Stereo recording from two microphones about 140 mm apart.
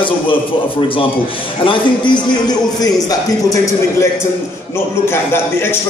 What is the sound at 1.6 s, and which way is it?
A man's voice, 35° left (ahead or behind).